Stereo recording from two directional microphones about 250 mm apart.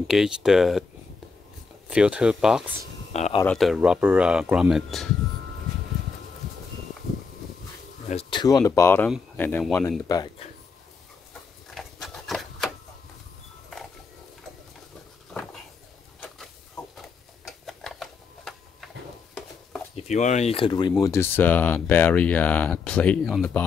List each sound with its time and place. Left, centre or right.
0.0 s speech: centre
1.9 s speech: centre
3.1 s speech: left
3.4 s speech: centre
8.1 s speech: left
11.7 s a sound: centre
15.3 s a sound: centre
17.5 s tick-tock: centre
20.0 s speech: left; by 23.6 s centre